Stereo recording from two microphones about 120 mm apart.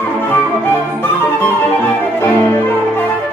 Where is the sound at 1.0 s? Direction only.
20° left (ahead or behind).